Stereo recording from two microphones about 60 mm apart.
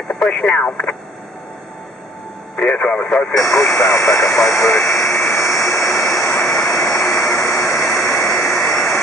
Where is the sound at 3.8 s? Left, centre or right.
Left.